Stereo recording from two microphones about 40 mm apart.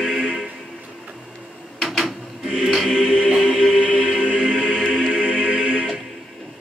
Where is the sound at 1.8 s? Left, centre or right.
Centre.